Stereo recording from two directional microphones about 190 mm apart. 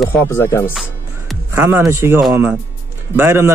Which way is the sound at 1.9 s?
10° right (ahead or behind).